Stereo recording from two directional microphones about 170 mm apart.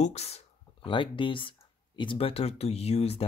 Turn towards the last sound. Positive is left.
turn(degrees=35)  # may be behind; listen again after turning